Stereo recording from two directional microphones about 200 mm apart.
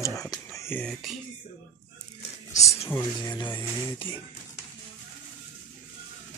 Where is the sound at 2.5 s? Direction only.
15° left (ahead or behind).